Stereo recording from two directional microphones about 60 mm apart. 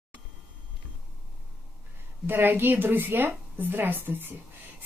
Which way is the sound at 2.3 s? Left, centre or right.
Right.